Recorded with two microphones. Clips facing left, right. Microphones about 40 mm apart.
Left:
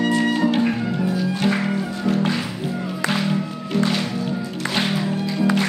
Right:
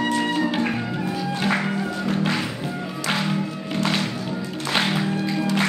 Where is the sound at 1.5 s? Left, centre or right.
Centre.